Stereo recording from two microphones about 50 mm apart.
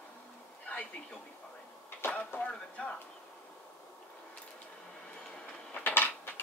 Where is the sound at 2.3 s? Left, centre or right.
Left.